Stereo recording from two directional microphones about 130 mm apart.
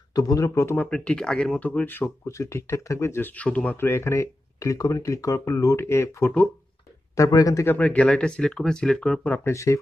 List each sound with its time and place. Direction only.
0.1 s speech: 30° left (ahead or behind)
0.8 s speech: 10° left (ahead or behind)
7.2 s speech: 25° left (ahead or behind)